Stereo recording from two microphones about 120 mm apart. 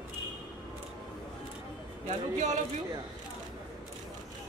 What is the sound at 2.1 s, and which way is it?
Speech, 90° right.